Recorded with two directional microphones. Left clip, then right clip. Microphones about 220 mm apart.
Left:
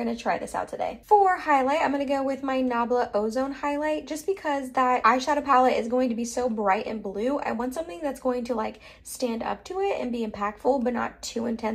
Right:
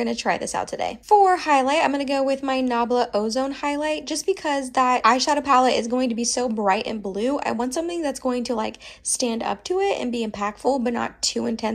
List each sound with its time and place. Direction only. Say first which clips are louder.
0.2 s a woman's voice: right 4 dB; 25° right (ahead or behind)